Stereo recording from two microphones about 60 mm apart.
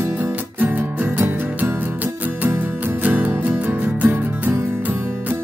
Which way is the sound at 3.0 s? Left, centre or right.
Right.